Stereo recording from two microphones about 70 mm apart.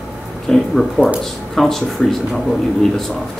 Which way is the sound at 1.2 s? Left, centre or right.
Centre.